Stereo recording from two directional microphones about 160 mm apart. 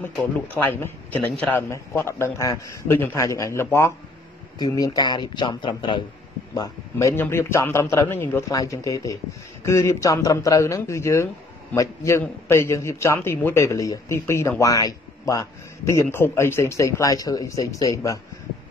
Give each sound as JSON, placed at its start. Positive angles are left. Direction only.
{"t": 0.6, "sound": "a man's voice", "side_deg": 10}